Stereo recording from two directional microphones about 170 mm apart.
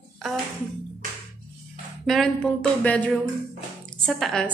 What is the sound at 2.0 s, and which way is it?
A woman's voice, centre (ahead or behind).